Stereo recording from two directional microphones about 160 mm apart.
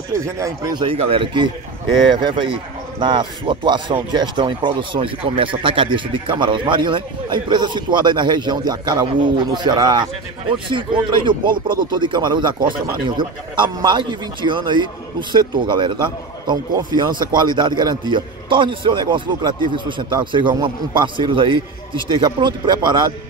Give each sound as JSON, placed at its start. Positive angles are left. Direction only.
{"t": 0.1, "sound": "a man's voice", "side_deg": -20}
{"t": 0.8, "sound": "a man's voice", "side_deg": -35}